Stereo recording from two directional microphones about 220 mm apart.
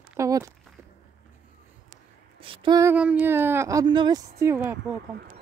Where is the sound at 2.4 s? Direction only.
25° right (ahead or behind).